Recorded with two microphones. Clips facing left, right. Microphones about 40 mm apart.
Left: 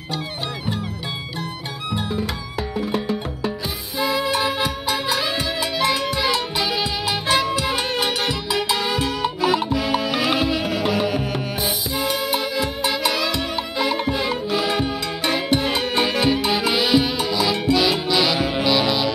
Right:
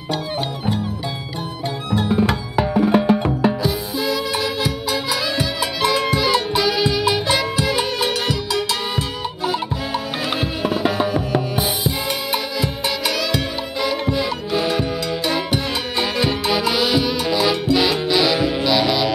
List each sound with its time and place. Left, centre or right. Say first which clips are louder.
4.0 s music: left 3 dB; left
5.4 s music: right 1 dB; centre
8.0 s music: right 2 dB; left
9.9 s music: left 2 dB; left
10.8 s music: right 3 dB; right
14.7 s music: right 2 dB; left
16.2 s music: even; centre
17.3 s music: right 6 dB; centre
17.9 s music: right 2 dB; centre